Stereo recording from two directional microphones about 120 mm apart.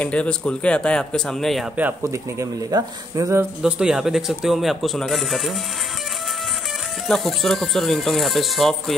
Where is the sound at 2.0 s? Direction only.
25° right (ahead or behind).